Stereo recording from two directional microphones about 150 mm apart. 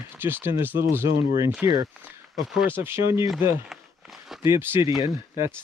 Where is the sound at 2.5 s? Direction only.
15° right (ahead or behind).